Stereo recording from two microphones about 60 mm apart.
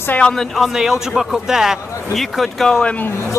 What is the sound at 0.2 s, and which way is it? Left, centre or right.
Speech, centre.